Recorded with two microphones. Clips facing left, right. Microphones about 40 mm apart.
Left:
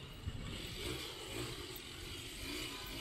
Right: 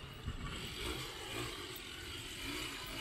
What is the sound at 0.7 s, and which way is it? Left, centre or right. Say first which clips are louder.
Vehicle: right 1 dB; centre.